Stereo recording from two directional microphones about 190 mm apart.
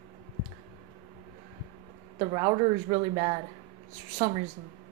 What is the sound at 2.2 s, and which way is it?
Speech, 30° right (ahead or behind).